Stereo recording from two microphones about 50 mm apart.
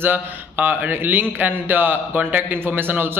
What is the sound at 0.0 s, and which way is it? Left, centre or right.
A man's voice, right.